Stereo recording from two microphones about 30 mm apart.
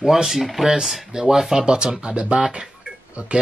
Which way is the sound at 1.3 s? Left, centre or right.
Centre.